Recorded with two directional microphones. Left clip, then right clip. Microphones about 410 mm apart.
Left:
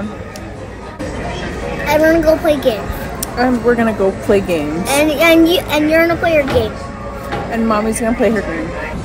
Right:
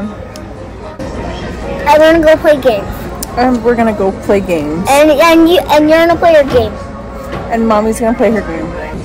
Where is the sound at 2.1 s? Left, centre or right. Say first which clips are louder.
Right 5 dB; centre.